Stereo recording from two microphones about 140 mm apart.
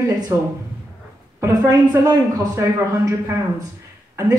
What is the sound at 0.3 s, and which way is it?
A woman's voice, 20° right (ahead or behind).